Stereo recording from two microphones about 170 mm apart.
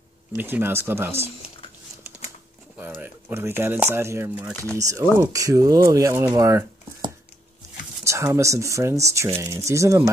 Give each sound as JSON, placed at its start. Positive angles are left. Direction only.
{"t": 0.3, "sound": "speech", "side_deg": -15}
{"t": 2.8, "sound": "speech", "side_deg": -10}